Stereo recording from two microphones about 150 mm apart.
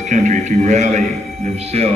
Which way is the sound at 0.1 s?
50° right (ahead or behind).